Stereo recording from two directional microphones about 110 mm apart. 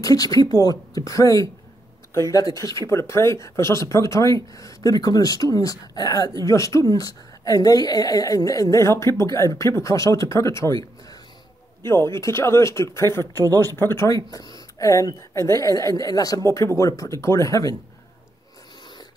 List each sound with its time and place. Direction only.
0.0 s speech: 35° left (ahead or behind)